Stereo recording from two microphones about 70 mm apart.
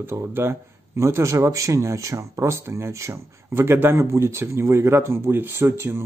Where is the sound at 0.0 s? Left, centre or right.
Right.